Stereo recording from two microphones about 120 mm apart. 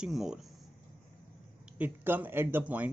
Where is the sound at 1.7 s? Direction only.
15° right (ahead or behind).